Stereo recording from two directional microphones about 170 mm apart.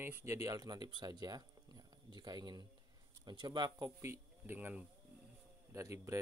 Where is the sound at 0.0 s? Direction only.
15° right (ahead or behind).